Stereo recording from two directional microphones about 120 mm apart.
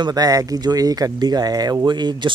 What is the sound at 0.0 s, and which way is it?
Speech, 30° right (ahead or behind).